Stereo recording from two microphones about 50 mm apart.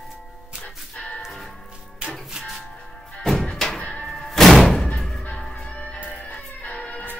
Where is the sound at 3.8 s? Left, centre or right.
Left.